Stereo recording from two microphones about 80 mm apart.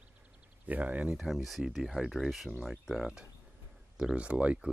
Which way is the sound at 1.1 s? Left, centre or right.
Centre.